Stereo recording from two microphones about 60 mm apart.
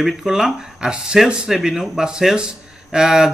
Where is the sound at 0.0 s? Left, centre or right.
Centre.